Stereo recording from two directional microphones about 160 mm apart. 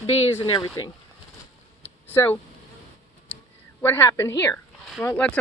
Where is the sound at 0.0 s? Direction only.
30° left (ahead or behind).